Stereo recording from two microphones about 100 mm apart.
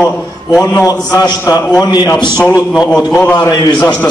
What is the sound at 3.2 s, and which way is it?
Speech, 25° left (ahead or behind).